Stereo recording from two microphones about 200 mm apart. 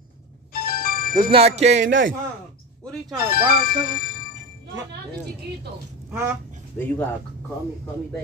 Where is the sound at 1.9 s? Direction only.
70° right (ahead or behind).